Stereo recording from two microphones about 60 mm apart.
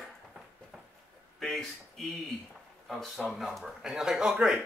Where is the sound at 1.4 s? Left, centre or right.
Centre.